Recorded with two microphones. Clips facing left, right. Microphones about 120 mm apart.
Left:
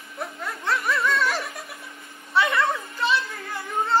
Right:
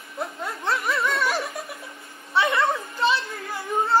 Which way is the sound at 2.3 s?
25° right (ahead or behind).